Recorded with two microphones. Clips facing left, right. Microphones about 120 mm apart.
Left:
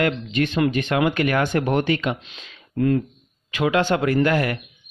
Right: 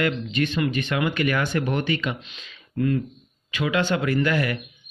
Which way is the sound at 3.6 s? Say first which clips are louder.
Left 4 dB; 50° left (ahead or behind).